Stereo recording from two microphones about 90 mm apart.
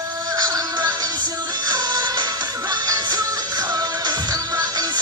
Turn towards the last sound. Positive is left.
turn(degrees=-50)  # may be behind; listen again after turning